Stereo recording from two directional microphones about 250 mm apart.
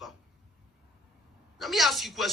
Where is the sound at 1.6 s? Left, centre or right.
Centre.